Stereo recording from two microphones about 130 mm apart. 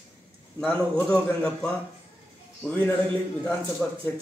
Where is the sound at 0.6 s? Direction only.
20° left (ahead or behind).